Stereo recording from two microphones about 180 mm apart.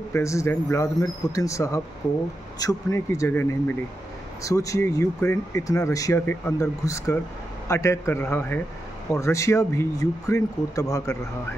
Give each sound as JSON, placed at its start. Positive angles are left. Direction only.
{"t": 0.1, "sound": "speech", "side_deg": 15}